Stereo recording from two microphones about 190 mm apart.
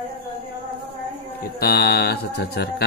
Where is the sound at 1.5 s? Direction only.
55° left (ahead or behind).